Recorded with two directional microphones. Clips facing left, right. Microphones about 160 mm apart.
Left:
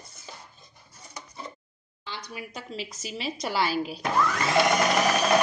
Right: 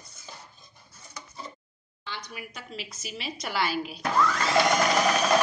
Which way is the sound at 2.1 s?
35° left (ahead or behind).